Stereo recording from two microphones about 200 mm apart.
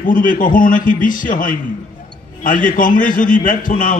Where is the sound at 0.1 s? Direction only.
40° left (ahead or behind).